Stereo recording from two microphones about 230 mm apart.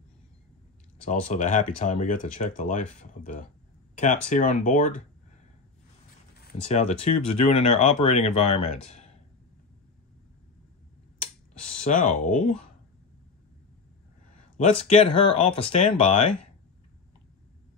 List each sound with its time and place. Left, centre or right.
1.2 s speech: left
3.9 s a sound: left
4.3 s speech: left
6.4 s speech: left
11.9 s speech: left
14.6 s speech: left